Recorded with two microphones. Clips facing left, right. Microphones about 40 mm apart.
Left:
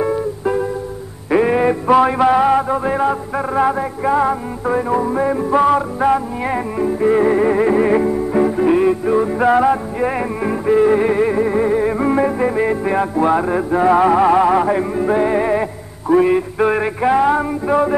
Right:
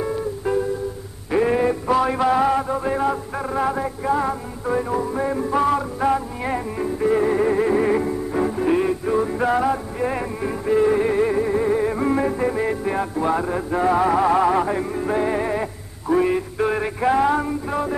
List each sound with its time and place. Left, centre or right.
0.0 s music: left
2.0 s music: left